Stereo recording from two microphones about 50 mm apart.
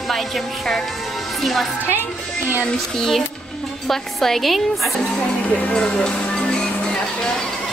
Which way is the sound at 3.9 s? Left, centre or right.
Centre.